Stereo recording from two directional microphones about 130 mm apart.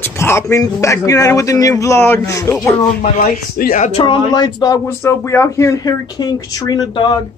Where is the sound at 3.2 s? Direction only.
85° left.